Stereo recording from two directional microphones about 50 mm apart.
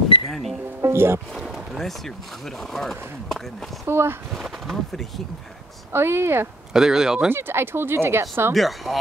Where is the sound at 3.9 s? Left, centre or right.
Right.